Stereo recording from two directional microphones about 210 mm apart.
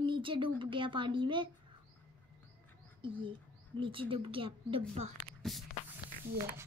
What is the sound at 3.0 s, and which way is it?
Speech, 25° right (ahead or behind).